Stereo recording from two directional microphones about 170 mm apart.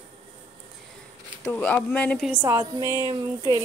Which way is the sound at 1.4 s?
5° left (ahead or behind).